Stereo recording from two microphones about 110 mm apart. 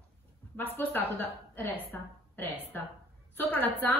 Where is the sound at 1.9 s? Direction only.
15° left (ahead or behind).